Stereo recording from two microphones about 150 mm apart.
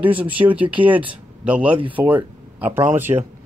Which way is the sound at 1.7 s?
35° right (ahead or behind).